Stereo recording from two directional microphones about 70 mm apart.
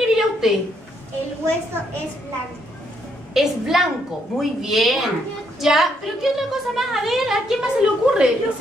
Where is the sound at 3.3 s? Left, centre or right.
Centre.